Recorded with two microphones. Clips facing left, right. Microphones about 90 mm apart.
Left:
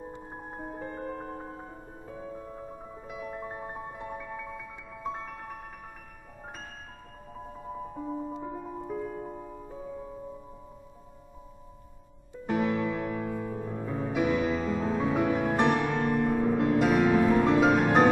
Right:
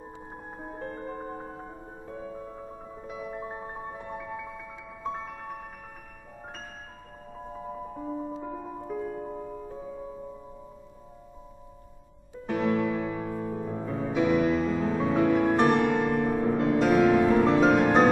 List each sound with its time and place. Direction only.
0.3 s music: centre (ahead or behind)
7.9 s music: centre (ahead or behind)
12.4 s music: 5° left (ahead or behind)